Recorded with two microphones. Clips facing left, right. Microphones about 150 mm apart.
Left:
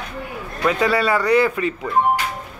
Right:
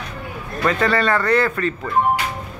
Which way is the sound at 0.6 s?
5° left (ahead or behind).